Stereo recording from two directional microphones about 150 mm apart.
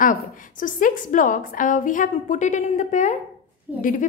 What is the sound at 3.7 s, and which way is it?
Speech, 15° right (ahead or behind).